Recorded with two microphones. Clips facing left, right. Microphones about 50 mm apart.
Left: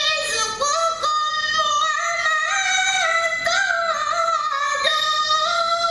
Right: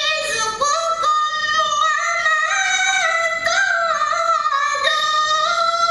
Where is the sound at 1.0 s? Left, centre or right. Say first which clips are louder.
Right 3 dB; right.